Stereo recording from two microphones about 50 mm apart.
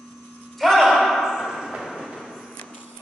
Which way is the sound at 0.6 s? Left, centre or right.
Centre.